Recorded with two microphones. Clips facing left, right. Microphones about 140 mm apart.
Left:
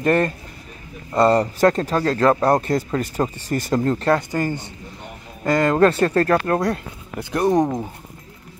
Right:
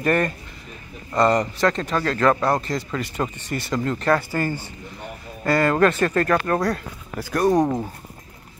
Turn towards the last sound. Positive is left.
turn(degrees=20)  # may be behind; listen again after turning